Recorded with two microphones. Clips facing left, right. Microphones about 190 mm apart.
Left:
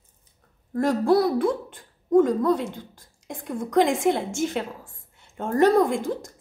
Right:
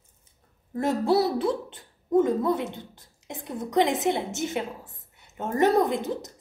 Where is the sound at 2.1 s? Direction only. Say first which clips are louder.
Left 3 dB; 20° right (ahead or behind).